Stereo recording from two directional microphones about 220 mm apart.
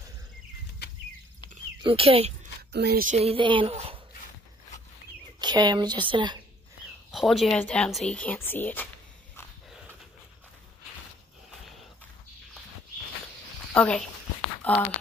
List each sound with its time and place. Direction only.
1.8 s speech: 25° right (ahead or behind)
2.7 s speech: 50° right (ahead or behind)
3.2 s speech: 25° right (ahead or behind)
5.4 s speech: 20° right (ahead or behind)
7.1 s speech: centre (ahead or behind)
13.7 s speech: 5° left (ahead or behind)
14.6 s a sound: 10° left (ahead or behind)